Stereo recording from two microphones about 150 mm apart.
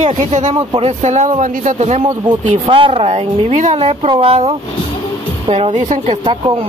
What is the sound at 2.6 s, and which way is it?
Speech, 35° right (ahead or behind).